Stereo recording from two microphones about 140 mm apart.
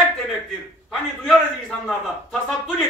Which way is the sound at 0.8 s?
5° left (ahead or behind).